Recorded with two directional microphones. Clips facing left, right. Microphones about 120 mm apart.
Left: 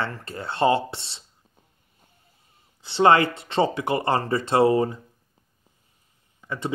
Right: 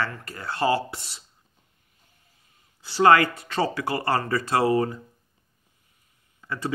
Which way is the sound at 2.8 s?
25° left (ahead or behind).